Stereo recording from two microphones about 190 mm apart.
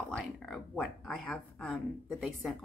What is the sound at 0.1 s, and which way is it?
Speech, centre (ahead or behind).